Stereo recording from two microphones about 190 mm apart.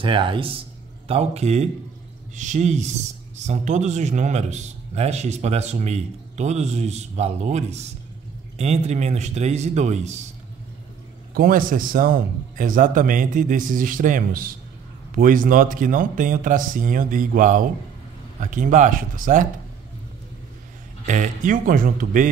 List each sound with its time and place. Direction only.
0.0 s speech: 25° right (ahead or behind)
11.3 s a man's voice: 45° right (ahead or behind)
21.0 s a man's voice: 40° right (ahead or behind)